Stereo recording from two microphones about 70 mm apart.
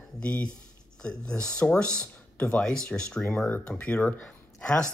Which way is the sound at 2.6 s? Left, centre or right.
Centre.